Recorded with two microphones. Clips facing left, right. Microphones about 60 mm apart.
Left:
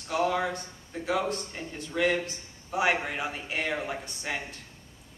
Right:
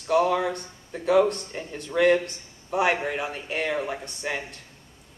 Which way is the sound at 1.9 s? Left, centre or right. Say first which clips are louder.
Right 7 dB; right.